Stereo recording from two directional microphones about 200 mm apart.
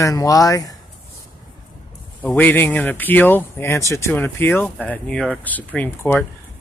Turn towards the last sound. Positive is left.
turn(degrees=10)  # may be behind; listen again after turning